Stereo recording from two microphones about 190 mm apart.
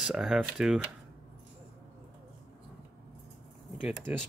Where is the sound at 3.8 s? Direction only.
5° right (ahead or behind).